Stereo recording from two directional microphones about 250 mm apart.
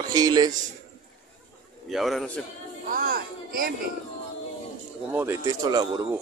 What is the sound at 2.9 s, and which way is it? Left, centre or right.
Speech, right.